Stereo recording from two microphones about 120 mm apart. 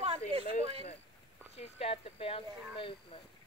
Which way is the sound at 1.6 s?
55° left (ahead or behind).